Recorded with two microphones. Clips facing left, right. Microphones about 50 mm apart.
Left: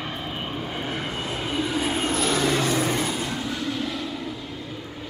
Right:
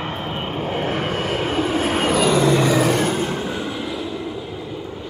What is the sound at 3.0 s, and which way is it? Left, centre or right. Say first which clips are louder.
Train: right 6 dB; right.